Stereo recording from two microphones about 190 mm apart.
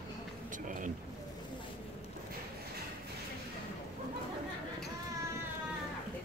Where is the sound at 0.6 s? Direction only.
45° right (ahead or behind).